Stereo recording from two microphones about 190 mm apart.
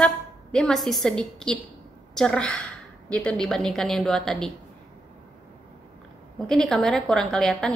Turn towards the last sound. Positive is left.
turn(degrees=0)  # may be behind; listen again after turning